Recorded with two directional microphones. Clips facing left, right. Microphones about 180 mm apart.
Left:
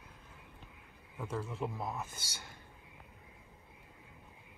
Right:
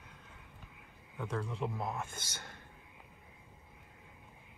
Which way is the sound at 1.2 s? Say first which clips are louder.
Right 1 dB; 5° left (ahead or behind).